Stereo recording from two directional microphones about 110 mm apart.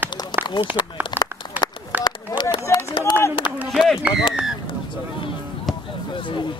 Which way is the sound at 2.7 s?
25° left (ahead or behind).